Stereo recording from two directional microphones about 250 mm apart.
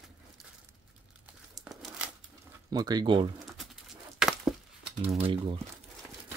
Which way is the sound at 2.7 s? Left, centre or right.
Centre.